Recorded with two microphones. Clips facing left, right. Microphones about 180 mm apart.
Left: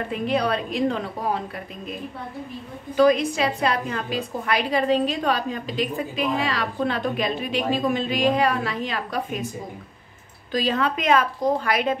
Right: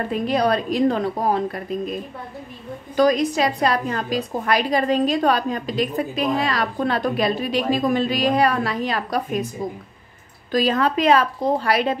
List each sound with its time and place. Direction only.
0.1 s a woman's voice: 40° right (ahead or behind)
3.0 s a woman's voice: 40° right (ahead or behind)
10.5 s a woman's voice: 40° right (ahead or behind)